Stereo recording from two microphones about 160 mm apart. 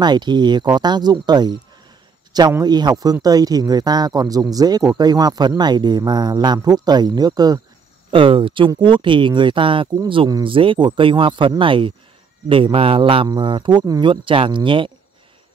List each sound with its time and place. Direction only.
0.0 s speech: 25° right (ahead or behind)